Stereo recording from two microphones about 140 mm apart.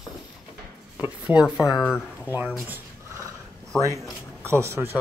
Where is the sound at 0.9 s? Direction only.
10° right (ahead or behind).